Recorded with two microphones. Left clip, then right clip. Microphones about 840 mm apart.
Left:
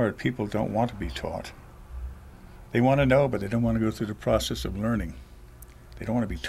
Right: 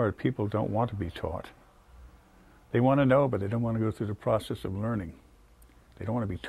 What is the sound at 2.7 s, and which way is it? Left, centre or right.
Speech, right.